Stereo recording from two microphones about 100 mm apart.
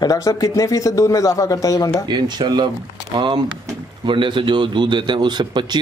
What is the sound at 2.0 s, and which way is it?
A man's voice, 45° right (ahead or behind).